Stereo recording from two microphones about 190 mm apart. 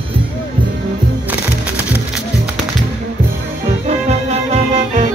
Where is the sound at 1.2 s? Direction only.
10° right (ahead or behind).